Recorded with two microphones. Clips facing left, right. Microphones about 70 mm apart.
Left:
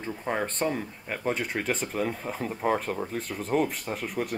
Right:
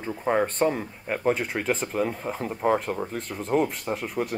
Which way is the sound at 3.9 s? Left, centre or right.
Right.